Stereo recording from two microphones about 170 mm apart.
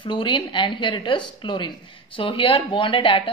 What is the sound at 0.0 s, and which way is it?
A woman's voice, 30° left (ahead or behind).